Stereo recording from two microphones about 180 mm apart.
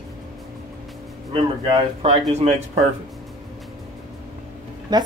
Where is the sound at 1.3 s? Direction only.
30° right (ahead or behind).